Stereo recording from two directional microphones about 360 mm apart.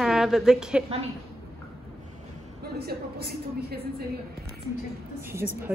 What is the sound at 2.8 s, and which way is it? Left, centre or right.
A woman's voice, right.